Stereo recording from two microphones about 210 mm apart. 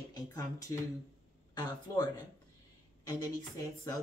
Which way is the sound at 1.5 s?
20° left (ahead or behind).